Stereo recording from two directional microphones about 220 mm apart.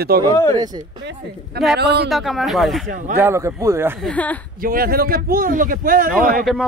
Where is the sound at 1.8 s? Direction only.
50° right (ahead or behind).